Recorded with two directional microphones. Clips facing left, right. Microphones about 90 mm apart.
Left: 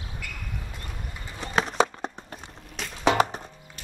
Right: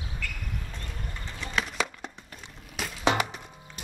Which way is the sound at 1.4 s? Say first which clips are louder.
Left 7 dB; 30° left (ahead or behind).